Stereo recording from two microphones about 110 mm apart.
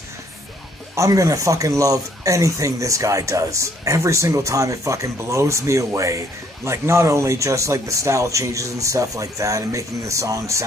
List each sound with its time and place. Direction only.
0.9 s speech: 30° right (ahead or behind)